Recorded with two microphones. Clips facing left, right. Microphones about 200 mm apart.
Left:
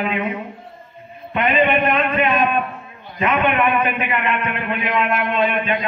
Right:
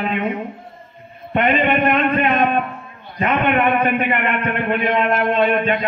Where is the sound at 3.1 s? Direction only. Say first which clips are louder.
Right 1 dB; 45° right (ahead or behind).